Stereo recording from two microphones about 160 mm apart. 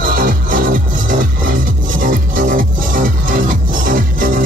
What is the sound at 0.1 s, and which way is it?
Music, 60° right (ahead or behind).